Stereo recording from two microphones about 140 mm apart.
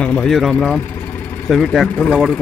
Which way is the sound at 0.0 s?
5° left (ahead or behind).